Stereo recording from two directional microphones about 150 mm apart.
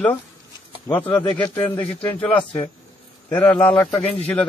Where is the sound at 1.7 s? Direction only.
35° left (ahead or behind).